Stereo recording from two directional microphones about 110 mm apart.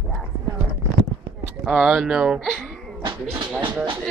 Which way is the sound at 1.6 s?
5° right (ahead or behind).